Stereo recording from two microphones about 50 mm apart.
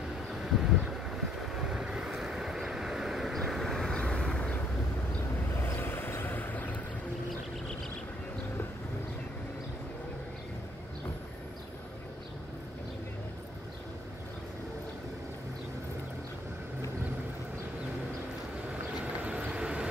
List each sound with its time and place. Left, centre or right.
0.3 s vehicle: centre
5.6 s vehicle: left
19.2 s vehicle: right